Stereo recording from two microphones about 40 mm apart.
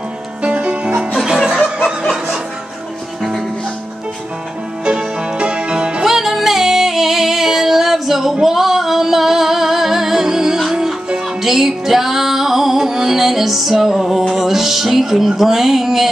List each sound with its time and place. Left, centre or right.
0.4 s music: right
1.2 s music: centre
3.2 s music: centre
4.8 s music: right
6.0 s female singing: centre
11.4 s music: centre